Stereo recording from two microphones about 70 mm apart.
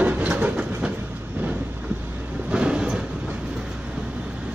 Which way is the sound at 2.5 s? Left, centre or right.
Centre.